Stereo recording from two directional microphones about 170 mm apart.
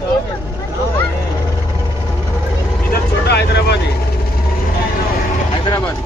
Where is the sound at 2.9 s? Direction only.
75° left (ahead or behind).